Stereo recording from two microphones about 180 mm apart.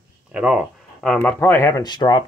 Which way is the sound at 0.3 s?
5° right (ahead or behind).